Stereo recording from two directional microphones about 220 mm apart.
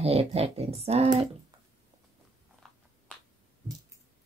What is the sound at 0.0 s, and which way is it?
A woman's voice, 30° right (ahead or behind).